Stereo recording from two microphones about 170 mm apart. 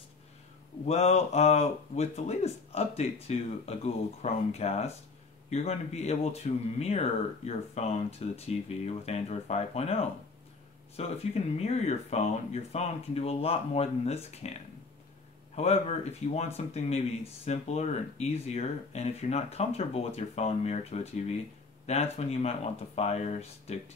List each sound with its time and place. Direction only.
0.8 s speech: 40° left (ahead or behind)
15.5 s speech: 40° left (ahead or behind)